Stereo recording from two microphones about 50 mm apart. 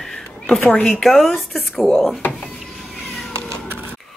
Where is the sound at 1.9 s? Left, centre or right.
Centre.